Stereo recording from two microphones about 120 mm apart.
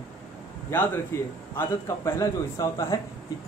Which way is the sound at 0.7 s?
15° left (ahead or behind).